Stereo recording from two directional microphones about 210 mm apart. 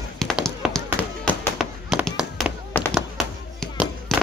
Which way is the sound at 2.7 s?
5° left (ahead or behind).